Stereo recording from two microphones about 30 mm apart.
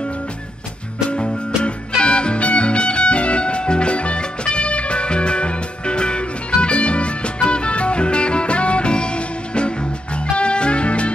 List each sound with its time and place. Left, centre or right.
1.1 s music: left